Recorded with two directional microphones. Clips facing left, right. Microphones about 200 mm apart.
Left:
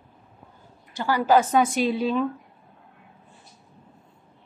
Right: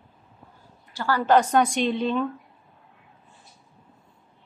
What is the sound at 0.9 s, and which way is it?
Speech, 20° left (ahead or behind).